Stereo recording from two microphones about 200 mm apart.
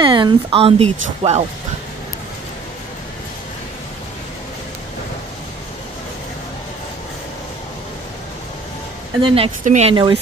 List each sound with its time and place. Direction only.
0.0 s speech: 20° right (ahead or behind)
9.2 s speech: 30° right (ahead or behind)